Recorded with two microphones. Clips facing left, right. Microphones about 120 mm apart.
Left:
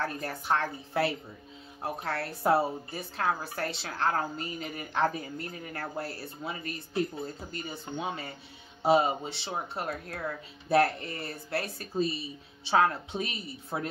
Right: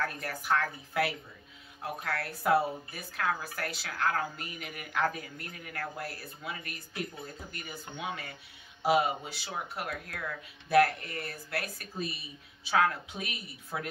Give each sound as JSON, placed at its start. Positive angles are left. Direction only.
{"t": 0.0, "sound": "a woman's voice", "side_deg": 30}